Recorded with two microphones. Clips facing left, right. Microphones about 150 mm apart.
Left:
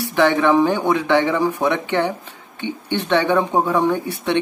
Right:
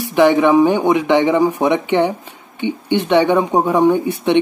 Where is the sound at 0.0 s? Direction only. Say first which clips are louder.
Right 4 dB; 15° right (ahead or behind).